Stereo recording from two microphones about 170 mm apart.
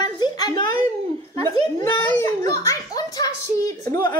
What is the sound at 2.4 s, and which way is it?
A child's voice, 20° left (ahead or behind).